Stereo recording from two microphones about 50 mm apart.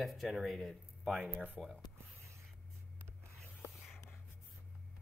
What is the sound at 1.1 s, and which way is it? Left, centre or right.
Speech, right.